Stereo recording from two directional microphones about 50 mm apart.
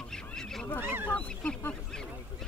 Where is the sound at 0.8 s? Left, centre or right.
Right.